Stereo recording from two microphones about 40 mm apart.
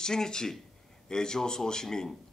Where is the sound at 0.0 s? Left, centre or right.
Centre.